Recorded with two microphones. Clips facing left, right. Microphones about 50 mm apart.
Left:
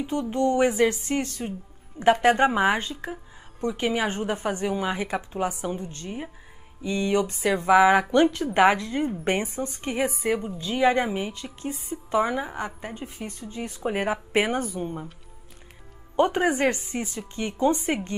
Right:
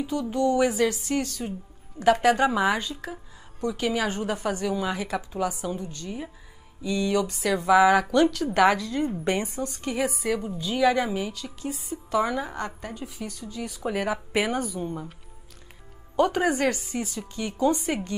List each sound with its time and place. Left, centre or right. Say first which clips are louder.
0.0 s speech: even; left
10.6 s a woman's voice: even; left; by 12.9 s centre
12.9 s speech: even; left
16.4 s speech: left 1 dB; left